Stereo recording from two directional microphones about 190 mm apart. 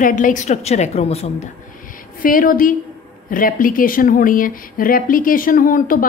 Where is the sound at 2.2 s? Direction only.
45° left (ahead or behind).